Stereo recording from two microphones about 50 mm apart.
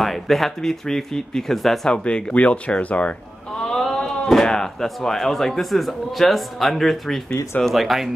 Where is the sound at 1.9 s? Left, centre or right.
Centre.